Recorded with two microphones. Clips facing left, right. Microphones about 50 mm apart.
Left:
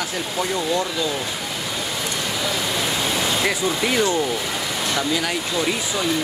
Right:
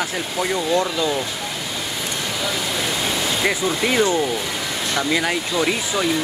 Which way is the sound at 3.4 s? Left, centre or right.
Centre.